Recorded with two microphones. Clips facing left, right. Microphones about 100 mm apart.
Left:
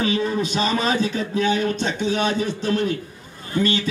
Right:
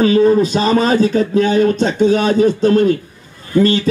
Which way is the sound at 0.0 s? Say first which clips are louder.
Right 11 dB; 40° right (ahead or behind).